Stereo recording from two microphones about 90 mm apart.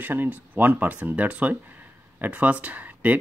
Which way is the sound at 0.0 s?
20° right (ahead or behind).